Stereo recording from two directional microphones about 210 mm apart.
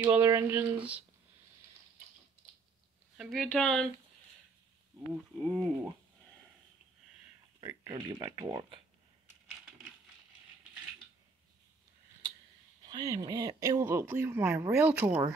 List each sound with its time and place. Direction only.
0.1 s speech: 10° right (ahead or behind)
3.2 s speech: centre (ahead or behind)
5.4 s speech: centre (ahead or behind)
7.6 s speech: 20° right (ahead or behind)
12.8 s speech: 20° right (ahead or behind)